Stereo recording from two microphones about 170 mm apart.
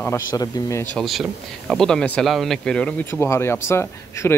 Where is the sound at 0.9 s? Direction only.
Centre (ahead or behind); by 4.3 s 15° left (ahead or behind).